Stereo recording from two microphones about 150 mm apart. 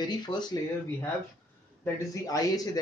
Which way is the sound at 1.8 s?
25° left (ahead or behind).